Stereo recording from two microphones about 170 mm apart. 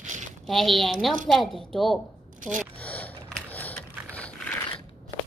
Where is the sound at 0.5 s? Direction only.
Centre (ahead or behind).